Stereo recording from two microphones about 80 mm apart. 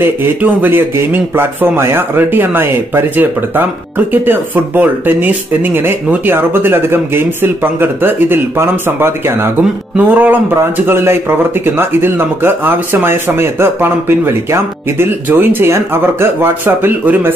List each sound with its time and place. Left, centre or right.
0.0 s speech: right